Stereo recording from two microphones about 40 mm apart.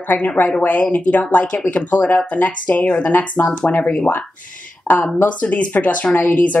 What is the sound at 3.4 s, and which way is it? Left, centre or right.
Speech, left.